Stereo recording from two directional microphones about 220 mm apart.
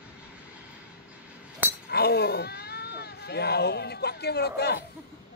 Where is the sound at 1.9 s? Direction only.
45° left (ahead or behind).